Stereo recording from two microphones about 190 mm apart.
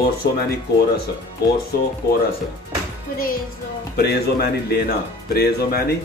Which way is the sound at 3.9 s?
55° left (ahead or behind).